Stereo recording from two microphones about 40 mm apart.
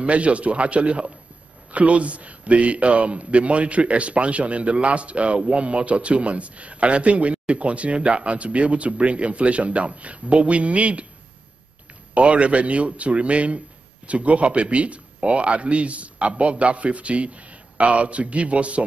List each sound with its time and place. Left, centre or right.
0.0 s a man's voice: right
12.1 s a man's voice: right